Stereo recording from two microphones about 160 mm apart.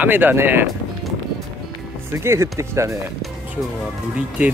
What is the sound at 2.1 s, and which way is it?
Speech, 15° right (ahead or behind).